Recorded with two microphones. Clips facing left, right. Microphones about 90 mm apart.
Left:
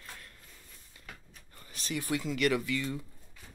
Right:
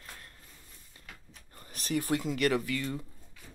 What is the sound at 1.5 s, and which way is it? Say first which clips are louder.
Speech: right 5 dB; 40° right (ahead or behind).